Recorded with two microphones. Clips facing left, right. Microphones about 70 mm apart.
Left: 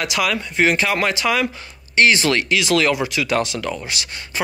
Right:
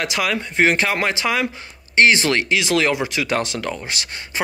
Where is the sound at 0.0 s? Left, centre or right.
Right.